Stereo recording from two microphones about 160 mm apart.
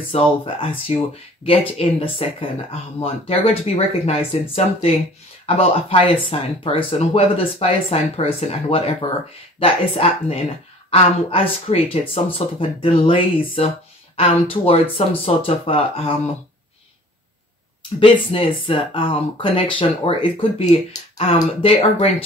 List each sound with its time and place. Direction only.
0.1 s speech: 35° left (ahead or behind)
18.0 s speech: 35° left (ahead or behind)